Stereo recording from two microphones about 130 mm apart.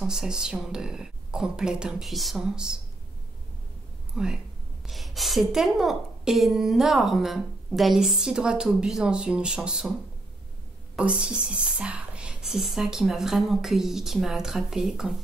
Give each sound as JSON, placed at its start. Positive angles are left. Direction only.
{"t": 0.0, "sound": "a woman's voice", "side_deg": -5}
{"t": 4.1, "sound": "a woman's voice", "side_deg": -5}
{"t": 11.0, "sound": "a woman's voice", "side_deg": -10}